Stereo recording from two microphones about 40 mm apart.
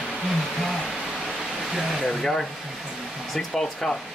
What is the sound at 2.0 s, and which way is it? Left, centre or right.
Speech, centre.